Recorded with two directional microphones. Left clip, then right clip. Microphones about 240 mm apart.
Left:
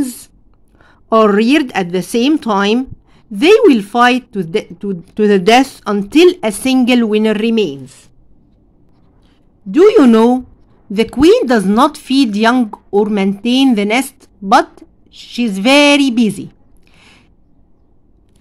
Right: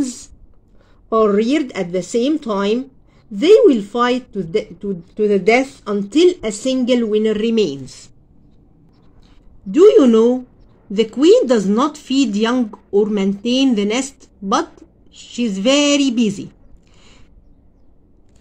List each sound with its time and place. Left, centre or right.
1.0 s a woman's voice: left
7.5 s speech: centre
9.7 s a woman's voice: left